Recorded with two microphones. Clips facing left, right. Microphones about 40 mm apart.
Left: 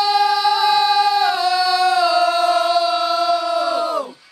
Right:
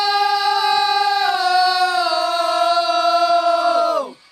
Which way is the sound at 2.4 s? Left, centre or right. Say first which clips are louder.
Left 1 dB; right.